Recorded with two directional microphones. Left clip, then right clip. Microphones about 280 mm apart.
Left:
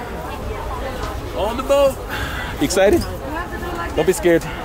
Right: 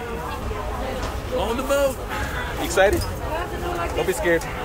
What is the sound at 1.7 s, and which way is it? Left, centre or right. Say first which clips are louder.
Speech: left 6 dB; centre.